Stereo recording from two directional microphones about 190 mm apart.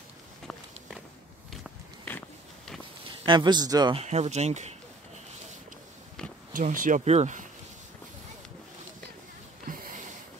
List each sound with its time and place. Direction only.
2.0 s a sound: 5° left (ahead or behind)
3.3 s a man's voice: 25° right (ahead or behind)
4.0 s speech: 35° right (ahead or behind)
6.5 s speech: 45° right (ahead or behind)
9.7 s sniff: 45° right (ahead or behind)